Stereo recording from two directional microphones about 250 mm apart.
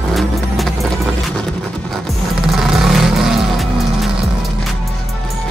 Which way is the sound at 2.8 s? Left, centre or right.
Centre.